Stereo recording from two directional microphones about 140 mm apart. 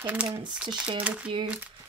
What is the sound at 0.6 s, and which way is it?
Speech, 40° right (ahead or behind).